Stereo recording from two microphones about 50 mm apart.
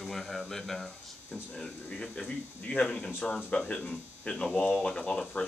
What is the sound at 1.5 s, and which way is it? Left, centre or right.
Speech, centre.